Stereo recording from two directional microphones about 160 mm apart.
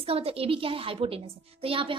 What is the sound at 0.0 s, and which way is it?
A woman's voice, 35° right (ahead or behind).